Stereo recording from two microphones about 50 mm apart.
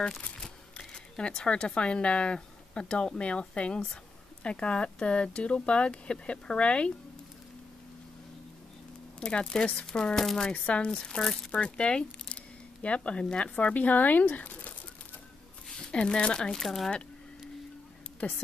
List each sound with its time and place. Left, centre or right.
0.7 s speech: centre
9.2 s speech: centre
10.5 s speech: left
15.8 s speech: centre
16.5 s speech: centre
18.2 s a woman's voice: left